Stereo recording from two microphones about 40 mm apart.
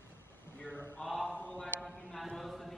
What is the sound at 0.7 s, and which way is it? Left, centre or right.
Mantra, left.